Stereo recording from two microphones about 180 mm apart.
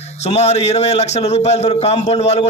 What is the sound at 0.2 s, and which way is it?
A man's voice, 35° left (ahead or behind).